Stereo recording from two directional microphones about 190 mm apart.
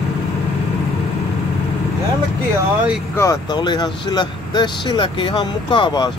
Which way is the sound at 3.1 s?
15° left (ahead or behind).